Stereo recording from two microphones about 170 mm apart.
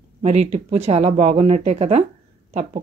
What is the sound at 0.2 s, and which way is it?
Speech, 40° right (ahead or behind).